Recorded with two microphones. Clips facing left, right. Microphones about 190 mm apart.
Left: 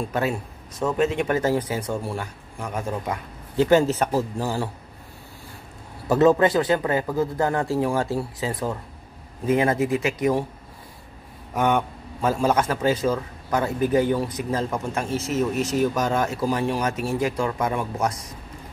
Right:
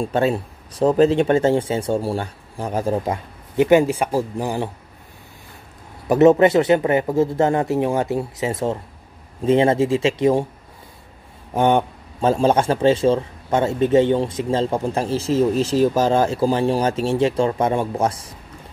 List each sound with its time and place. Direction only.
0.0 s speech: 30° right (ahead or behind)
3.5 s speech: 15° right (ahead or behind)
6.0 s a man's voice: 20° right (ahead or behind)
11.5 s a man's voice: 30° right (ahead or behind)